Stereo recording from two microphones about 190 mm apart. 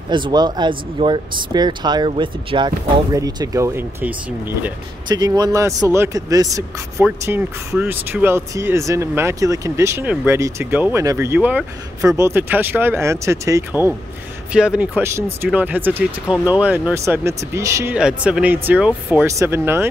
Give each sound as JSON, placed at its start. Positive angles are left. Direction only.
{"t": 0.1, "sound": "speech", "side_deg": -25}
{"t": 14.5, "sound": "speech", "side_deg": -5}